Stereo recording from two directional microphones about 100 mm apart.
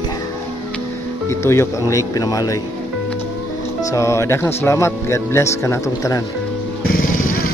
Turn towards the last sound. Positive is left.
turn(degrees=30)  # may be behind; listen again after turning